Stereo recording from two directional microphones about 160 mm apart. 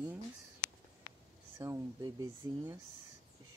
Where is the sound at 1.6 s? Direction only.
20° right (ahead or behind).